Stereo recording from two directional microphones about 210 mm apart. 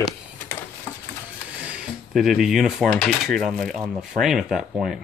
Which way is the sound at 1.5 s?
5° right (ahead or behind).